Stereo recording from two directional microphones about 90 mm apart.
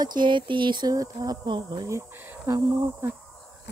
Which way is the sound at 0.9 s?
40° right (ahead or behind).